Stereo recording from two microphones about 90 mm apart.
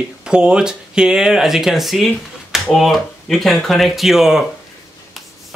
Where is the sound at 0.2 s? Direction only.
10° right (ahead or behind).